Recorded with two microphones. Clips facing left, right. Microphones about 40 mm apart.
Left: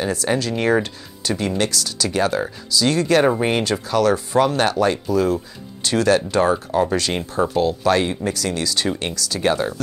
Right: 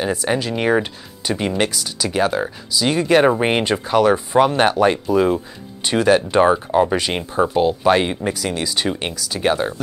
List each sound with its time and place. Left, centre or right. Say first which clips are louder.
0.0 s speech: right 1 dB; centre